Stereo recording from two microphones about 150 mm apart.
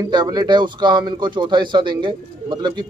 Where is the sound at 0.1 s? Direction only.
25° right (ahead or behind).